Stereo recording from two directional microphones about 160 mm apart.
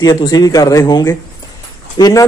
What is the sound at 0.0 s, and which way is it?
A man's voice, 25° left (ahead or behind).